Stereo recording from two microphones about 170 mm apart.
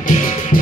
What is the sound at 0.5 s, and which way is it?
Music, 55° left (ahead or behind).